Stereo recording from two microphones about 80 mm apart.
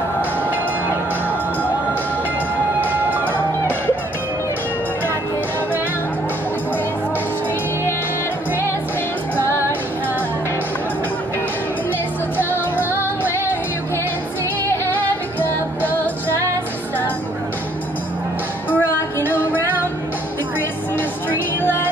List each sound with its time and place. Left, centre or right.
2.8 s music: right
3.3 s music: left
12.4 s music: left
14.7 s music: left
18.8 s music: left
21.5 s music: left